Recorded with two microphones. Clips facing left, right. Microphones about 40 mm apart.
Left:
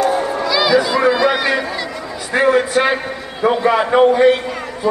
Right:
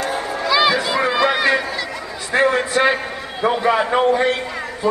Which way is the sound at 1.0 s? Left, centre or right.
Centre.